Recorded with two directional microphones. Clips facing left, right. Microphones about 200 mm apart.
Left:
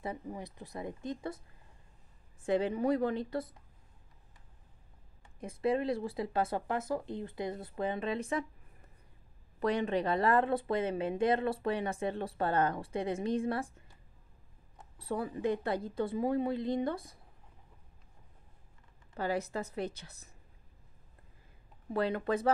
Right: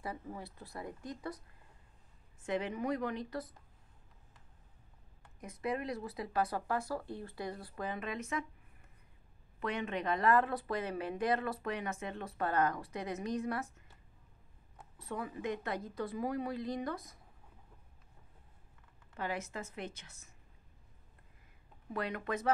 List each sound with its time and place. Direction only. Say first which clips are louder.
0.0 s speech: left 3 dB; 20° left (ahead or behind)
2.4 s a woman's voice: left 6 dB; 30° left (ahead or behind)
5.4 s speech: left 6 dB; 30° left (ahead or behind)
9.6 s speech: left 7 dB; 35° left (ahead or behind)
15.0 s speech: left 5 dB; 35° left (ahead or behind)
19.1 s a woman's voice: left 6 dB; 35° left (ahead or behind)
21.9 s a woman's voice: left 6 dB; 30° left (ahead or behind)